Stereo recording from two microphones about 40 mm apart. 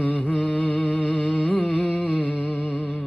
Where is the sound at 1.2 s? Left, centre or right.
Left.